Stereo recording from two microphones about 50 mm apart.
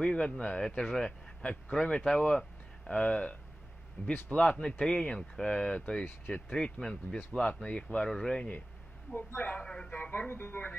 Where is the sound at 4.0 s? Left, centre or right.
Left.